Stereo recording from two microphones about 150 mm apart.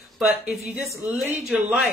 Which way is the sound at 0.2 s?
5° right (ahead or behind).